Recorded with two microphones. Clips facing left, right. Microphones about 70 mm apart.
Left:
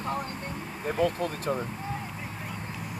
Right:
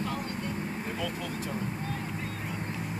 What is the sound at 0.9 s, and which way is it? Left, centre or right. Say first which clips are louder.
Speech: left 7 dB; left.